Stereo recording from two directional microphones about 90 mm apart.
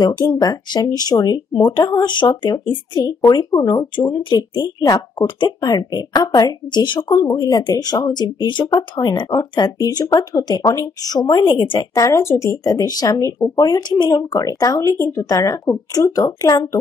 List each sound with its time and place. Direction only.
0.2 s speech: 35° left (ahead or behind)
1.7 s speech: 60° left (ahead or behind)
7.2 s speech: 45° left (ahead or behind); by 9.2 s 60° left (ahead or behind)
9.3 s speech: 45° left (ahead or behind)
12.1 s speech: 30° left (ahead or behind)
12.6 s speech: 45° left (ahead or behind)